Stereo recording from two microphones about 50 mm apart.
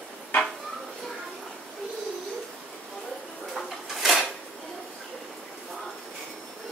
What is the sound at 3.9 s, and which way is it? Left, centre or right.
Drawer open or close, centre.